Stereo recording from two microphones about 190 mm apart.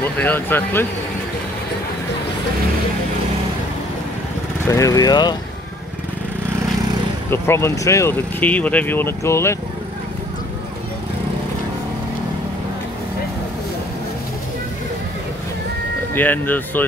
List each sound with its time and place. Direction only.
0.0 s speech: 10° left (ahead or behind)
4.6 s speech: 15° left (ahead or behind)
7.2 s speech: 15° left (ahead or behind)
16.2 s speech: 10° left (ahead or behind)